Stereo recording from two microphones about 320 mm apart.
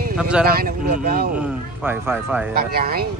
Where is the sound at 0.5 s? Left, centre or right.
Right.